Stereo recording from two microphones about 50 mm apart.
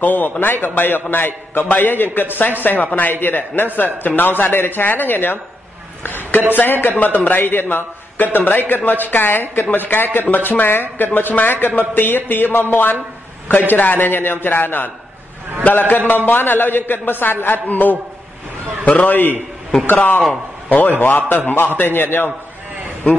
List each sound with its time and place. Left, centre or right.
0.0 s a man's voice: left
6.0 s a sound: left
6.5 s a man's voice: left